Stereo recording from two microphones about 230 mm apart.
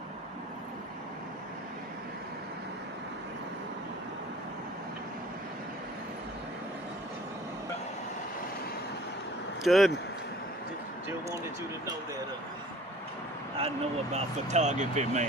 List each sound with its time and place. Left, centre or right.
9.6 s speech: centre
13.6 s speech: right